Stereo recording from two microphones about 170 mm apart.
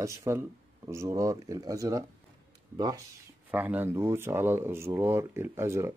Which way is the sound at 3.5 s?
10° right (ahead or behind).